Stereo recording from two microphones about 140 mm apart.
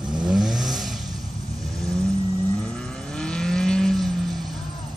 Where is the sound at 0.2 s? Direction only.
5° right (ahead or behind).